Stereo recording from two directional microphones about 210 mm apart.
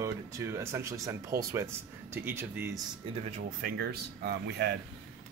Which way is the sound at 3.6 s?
45° right (ahead or behind).